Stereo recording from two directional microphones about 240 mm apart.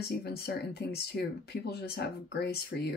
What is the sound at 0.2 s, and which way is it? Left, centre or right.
Speech, left.